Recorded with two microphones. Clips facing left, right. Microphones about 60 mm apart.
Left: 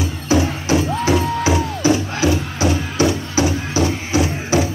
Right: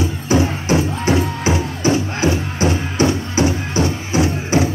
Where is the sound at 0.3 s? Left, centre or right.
Right.